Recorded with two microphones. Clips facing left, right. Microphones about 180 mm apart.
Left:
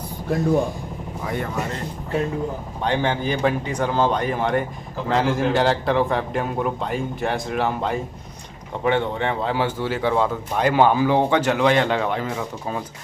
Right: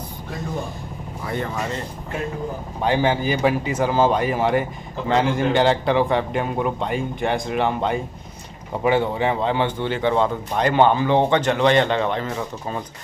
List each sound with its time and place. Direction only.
1.2 s speech: 5° left (ahead or behind)
2.8 s speech: 5° right (ahead or behind)